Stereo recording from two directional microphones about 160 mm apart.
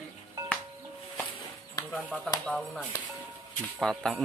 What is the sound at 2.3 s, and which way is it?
Speech, 5° left (ahead or behind).